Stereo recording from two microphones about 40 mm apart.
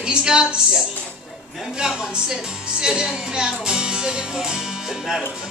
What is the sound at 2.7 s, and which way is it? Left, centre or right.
Music, centre.